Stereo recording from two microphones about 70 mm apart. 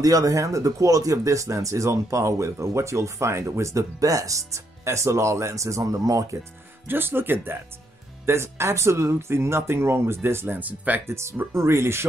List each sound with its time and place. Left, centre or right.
0.0 s speech: right
6.9 s speech: right
11.1 s speech: right